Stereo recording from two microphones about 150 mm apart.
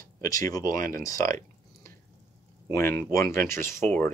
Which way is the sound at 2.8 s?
15° left (ahead or behind).